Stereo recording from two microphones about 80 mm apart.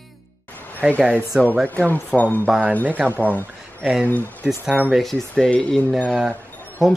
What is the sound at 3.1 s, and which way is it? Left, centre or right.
Speech, left.